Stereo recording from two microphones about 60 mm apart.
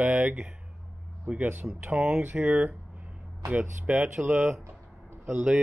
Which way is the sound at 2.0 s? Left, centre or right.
Right.